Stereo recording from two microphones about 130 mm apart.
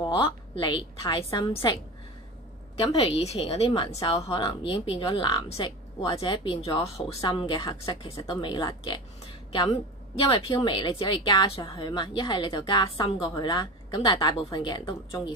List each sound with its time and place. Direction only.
0.0 s a woman's voice: 40° left (ahead or behind)
2.8 s a woman's voice: 45° left (ahead or behind)
7.1 s speech: 25° left (ahead or behind)
7.3 s a woman's voice: 35° left (ahead or behind)